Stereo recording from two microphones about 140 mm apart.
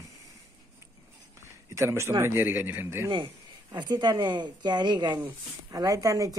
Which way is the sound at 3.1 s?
35° right (ahead or behind).